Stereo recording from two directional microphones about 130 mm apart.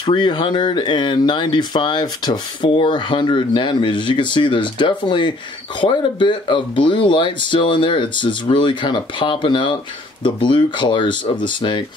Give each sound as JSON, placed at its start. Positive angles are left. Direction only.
{"t": 0.0, "sound": "speech", "side_deg": 35}